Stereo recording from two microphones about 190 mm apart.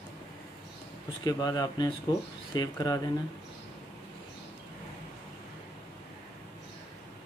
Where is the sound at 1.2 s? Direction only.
20° left (ahead or behind).